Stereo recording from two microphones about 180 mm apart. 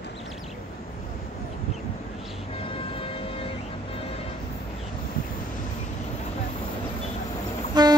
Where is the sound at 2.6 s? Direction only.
30° left (ahead or behind).